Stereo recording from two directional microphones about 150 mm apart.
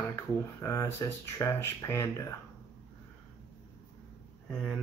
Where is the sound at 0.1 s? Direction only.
20° left (ahead or behind).